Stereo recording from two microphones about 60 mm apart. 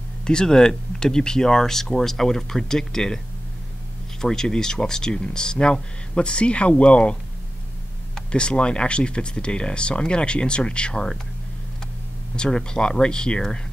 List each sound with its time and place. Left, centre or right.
0.3 s speech: centre
4.2 s speech: centre
12.4 s speech: centre